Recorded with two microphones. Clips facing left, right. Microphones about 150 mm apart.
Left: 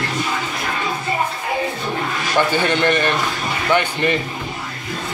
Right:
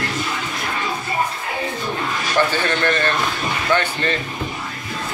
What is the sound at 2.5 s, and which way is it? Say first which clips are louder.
Speech: left 3 dB; 15° left (ahead or behind).